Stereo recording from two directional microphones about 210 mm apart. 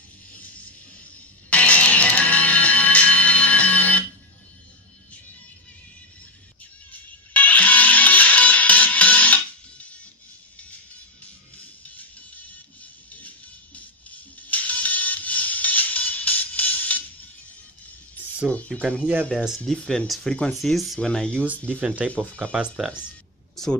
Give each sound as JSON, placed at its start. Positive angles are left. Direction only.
{"t": 0.3, "sound": "music", "side_deg": 5}
{"t": 6.9, "sound": "music", "side_deg": 5}
{"t": 11.5, "sound": "music", "side_deg": 5}
{"t": 13.7, "sound": "music", "side_deg": 5}
{"t": 18.5, "sound": "speech", "side_deg": 5}
{"t": 21.5, "sound": "speech", "side_deg": -10}
{"t": 22.1, "sound": "speech", "side_deg": 5}
{"t": 22.4, "sound": "speech", "side_deg": -5}
{"t": 23.5, "sound": "a sound", "side_deg": 0}